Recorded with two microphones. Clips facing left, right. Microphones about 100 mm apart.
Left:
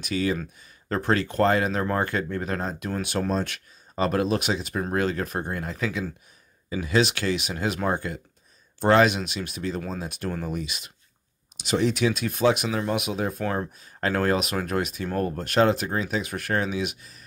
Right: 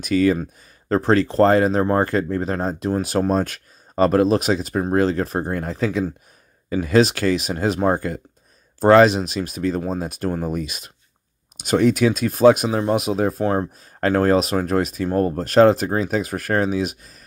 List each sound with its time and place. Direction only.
0.0 s speech: 45° right (ahead or behind)